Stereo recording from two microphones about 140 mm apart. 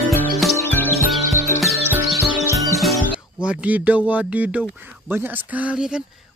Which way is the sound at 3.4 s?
10° right (ahead or behind).